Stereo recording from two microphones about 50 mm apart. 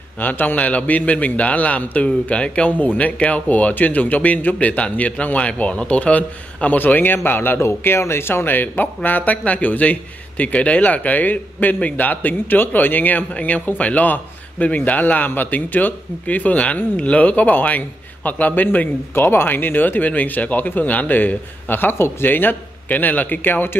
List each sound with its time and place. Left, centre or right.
0.2 s a man's voice: left
19.1 s a man's voice: left